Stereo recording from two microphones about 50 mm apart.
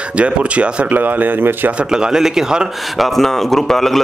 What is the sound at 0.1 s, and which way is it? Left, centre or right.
Speech, right.